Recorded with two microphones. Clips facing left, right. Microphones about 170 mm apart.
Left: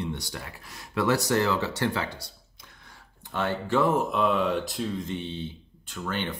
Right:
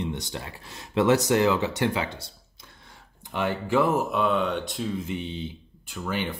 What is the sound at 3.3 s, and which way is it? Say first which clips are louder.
Speech: right 2 dB; 10° right (ahead or behind).